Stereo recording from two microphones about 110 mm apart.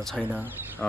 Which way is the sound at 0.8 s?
5° left (ahead or behind).